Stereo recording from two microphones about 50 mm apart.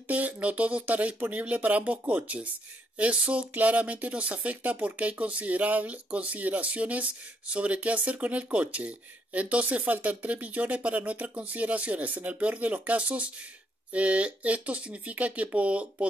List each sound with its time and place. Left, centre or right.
0.1 s speech: right